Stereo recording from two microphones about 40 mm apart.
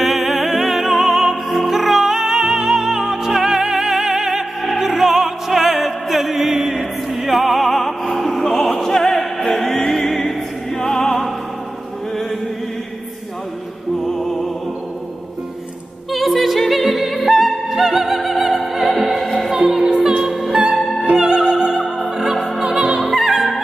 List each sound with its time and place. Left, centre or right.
0.0 s music: centre
4.6 s opera: centre
14.0 s music: centre
16.1 s opera: centre
18.9 s music: centre
19.2 s music: centre
19.7 s music: centre
20.2 s music: centre
21.1 s music: centre
22.1 s opera: centre
22.6 s opera: right
23.0 s opera: centre